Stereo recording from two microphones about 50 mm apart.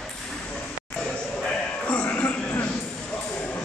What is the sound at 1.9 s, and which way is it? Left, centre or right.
Music, left.